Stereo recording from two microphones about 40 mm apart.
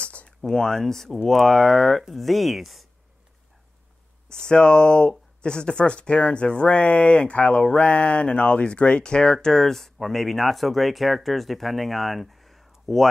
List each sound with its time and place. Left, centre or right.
0.0 s a sound: left
0.6 s speech: centre
2.0 s speech: centre
4.3 s speech: centre